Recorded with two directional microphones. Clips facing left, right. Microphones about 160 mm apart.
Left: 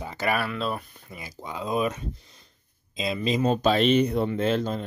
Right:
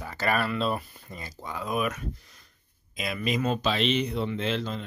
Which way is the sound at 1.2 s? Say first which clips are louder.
Left 2 dB; 15° left (ahead or behind).